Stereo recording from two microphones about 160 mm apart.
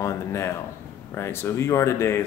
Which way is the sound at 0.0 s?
20° left (ahead or behind).